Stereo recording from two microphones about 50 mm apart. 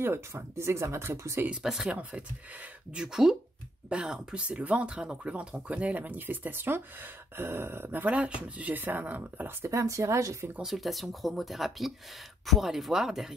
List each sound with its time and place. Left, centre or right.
0.0 s speech: right
1.5 s speech: centre; by 7.9 s right
7.9 s speech: right
9.7 s speech: right
10.6 s speech: centre